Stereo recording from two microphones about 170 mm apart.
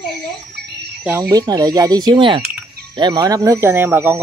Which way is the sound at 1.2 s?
25° right (ahead or behind).